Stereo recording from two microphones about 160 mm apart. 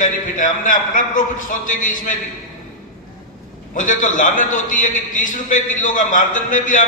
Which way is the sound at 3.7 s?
55° left (ahead or behind).